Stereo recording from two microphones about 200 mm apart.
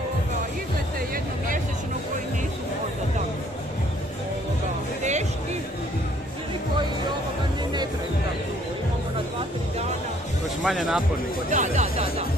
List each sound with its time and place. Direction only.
10.6 s speech: centre (ahead or behind)
11.5 s speech: 35° right (ahead or behind)